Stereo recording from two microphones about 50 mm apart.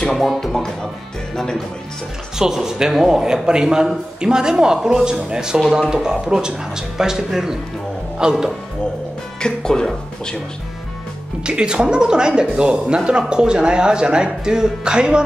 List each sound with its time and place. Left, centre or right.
0.0 s a man's voice: centre
2.3 s speech: centre
5.6 s speech: centre
9.4 s speech: centre
11.4 s speech: centre